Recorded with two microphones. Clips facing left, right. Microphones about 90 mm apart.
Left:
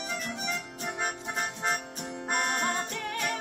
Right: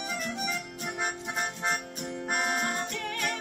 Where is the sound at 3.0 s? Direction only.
30° left (ahead or behind).